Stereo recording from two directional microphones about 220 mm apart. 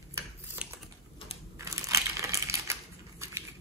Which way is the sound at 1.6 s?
15° right (ahead or behind).